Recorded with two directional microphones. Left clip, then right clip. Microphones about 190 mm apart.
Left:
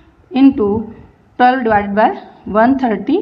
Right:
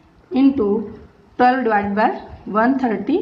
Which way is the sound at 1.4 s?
30° left (ahead or behind).